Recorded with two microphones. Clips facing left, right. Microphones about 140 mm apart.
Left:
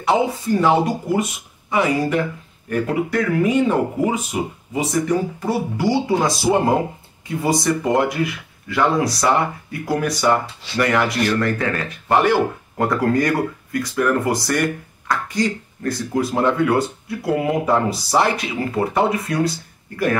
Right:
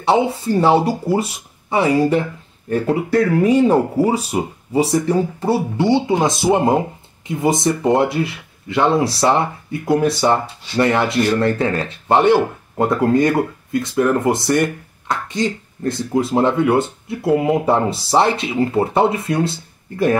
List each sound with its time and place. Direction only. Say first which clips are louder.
0.0 s speech: right 2 dB; 30° right (ahead or behind)